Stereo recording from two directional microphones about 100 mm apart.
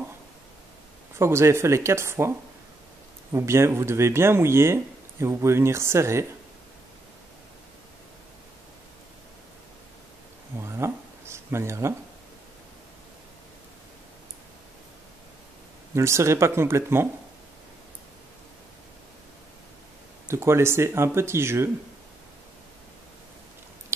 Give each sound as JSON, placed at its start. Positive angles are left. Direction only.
{"t": 1.1, "sound": "speech", "side_deg": -25}
{"t": 3.3, "sound": "speech", "side_deg": -25}
{"t": 10.6, "sound": "a sound", "side_deg": -25}
{"t": 15.9, "sound": "speech", "side_deg": -30}
{"t": 20.2, "sound": "speech", "side_deg": -25}